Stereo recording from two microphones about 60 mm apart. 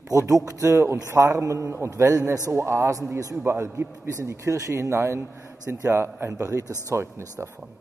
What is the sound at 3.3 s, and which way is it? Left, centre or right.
Speech, right.